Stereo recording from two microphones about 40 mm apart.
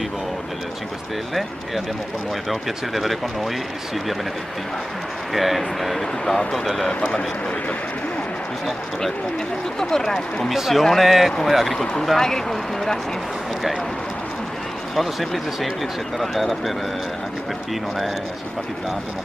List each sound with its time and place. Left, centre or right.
2.5 s speech: centre
5.3 s speech: centre
6.9 s speech: left
9.8 s speech: centre
10.5 s speech: centre
15.0 s speech: centre